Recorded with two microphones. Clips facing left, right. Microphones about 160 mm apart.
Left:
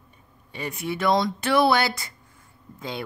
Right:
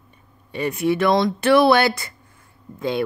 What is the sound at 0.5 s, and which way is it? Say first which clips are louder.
Speech: right 9 dB; 60° right (ahead or behind).